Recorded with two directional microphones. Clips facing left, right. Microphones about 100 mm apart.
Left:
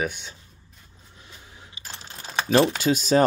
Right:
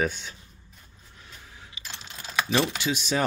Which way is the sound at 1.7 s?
35° left (ahead or behind).